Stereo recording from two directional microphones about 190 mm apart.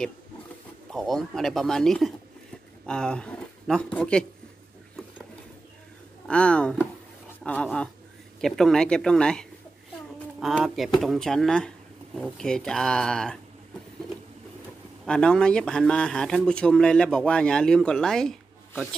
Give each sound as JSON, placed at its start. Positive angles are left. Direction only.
{"t": 0.8, "sound": "speech", "side_deg": 0}
{"t": 6.2, "sound": "speech", "side_deg": 5}
{"t": 15.0, "sound": "speech", "side_deg": 5}